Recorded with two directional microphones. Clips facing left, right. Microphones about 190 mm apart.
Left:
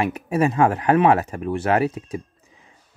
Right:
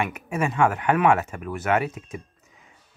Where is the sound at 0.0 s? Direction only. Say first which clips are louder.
Left 6 dB; 35° left (ahead or behind).